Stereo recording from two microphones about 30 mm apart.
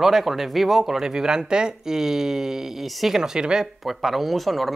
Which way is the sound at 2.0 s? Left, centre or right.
Centre.